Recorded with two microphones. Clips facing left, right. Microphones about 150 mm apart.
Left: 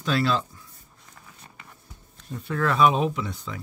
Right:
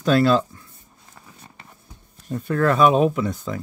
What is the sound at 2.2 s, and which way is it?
Speech, 50° right (ahead or behind).